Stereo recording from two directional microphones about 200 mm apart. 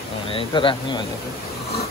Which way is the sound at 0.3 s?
25° left (ahead or behind).